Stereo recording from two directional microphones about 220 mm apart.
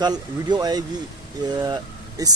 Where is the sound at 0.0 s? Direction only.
20° right (ahead or behind).